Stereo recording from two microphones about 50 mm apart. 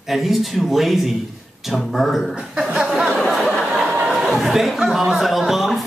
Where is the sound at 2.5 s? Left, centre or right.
Centre.